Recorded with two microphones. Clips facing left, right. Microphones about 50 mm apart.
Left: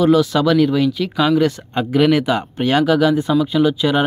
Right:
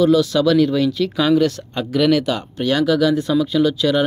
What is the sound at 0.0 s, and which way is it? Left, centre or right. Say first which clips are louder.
Speech: left 1 dB; left.